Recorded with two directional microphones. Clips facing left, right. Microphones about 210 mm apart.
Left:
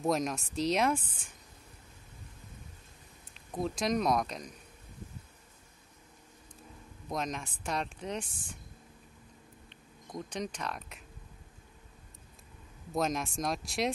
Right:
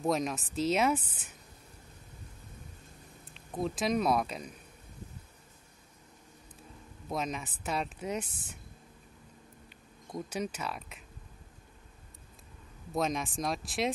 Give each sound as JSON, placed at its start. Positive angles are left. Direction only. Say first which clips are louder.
{"t": 0.0, "sound": "speech", "louder": "even", "side_deg": 0}
{"t": 3.3, "sound": "speech", "louder": "right 1 dB", "side_deg": 0}
{"t": 7.1, "sound": "speech", "louder": "right 1 dB", "side_deg": 0}
{"t": 9.7, "sound": "a sound", "louder": "right 2 dB", "side_deg": -5}
{"t": 12.9, "sound": "speech", "louder": "even", "side_deg": 0}